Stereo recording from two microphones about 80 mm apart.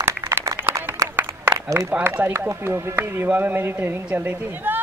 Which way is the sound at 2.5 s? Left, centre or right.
Right.